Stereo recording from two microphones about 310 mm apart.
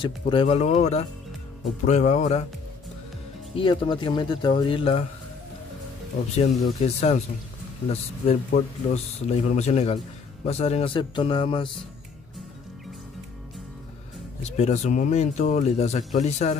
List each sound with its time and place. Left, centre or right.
0.0 s speech: centre
3.5 s speech: centre
6.3 s speech: centre
14.4 s speech: left